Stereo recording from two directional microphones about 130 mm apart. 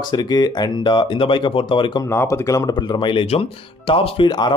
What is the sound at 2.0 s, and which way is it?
Speech, 20° left (ahead or behind).